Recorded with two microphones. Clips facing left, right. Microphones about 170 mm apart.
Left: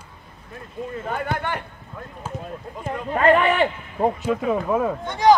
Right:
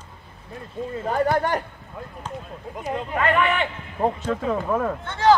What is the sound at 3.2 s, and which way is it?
Speech, 40° left (ahead or behind).